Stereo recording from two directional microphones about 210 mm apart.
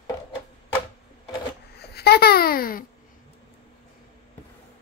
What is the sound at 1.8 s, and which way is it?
Babbling, 50° left (ahead or behind).